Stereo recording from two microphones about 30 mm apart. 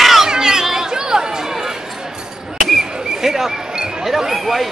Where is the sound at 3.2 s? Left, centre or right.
Centre.